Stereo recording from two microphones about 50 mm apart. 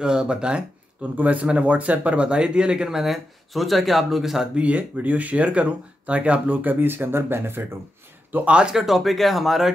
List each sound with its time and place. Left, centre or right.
0.0 s speech: centre
1.1 s speech: right; by 4.5 s centre
4.6 s speech: right
8.5 s speech: centre
8.7 s speech: centre